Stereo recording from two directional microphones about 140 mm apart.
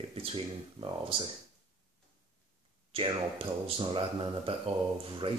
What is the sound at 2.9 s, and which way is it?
Speech, 40° right (ahead or behind).